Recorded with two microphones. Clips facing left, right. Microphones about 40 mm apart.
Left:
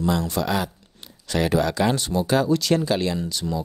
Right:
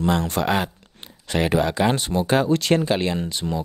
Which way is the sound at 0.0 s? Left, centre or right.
Right.